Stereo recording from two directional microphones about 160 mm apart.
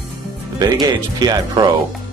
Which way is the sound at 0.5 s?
25° right (ahead or behind).